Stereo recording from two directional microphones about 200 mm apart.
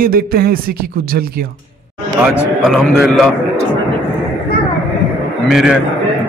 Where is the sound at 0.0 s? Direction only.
50° right (ahead or behind).